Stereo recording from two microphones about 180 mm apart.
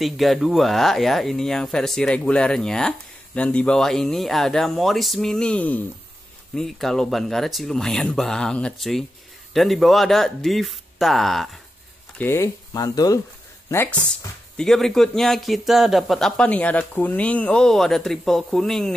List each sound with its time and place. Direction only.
0.0 s speech: centre (ahead or behind)
12.2 s speech: 15° left (ahead or behind)
14.6 s speech: centre (ahead or behind)